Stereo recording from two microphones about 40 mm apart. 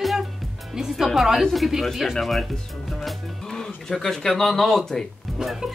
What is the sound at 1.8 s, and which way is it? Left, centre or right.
Speech, centre.